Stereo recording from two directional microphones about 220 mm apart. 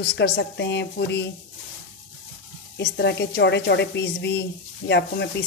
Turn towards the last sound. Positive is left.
turn(degrees=50)  # may be behind; listen again after turning